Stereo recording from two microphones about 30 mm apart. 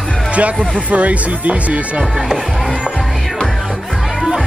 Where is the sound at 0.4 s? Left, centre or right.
Right.